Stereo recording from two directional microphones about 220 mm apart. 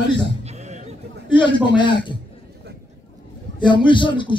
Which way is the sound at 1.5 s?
20° left (ahead or behind).